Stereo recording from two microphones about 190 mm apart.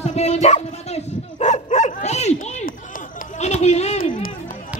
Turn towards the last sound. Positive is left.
turn(degrees=45)  # may be behind; listen again after turning